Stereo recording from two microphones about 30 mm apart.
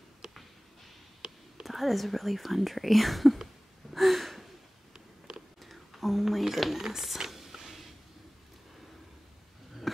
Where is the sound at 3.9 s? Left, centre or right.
Centre.